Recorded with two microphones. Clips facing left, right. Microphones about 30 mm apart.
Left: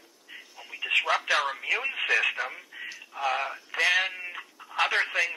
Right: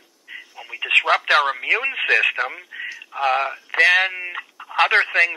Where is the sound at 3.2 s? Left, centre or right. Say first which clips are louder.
Right 8 dB; right.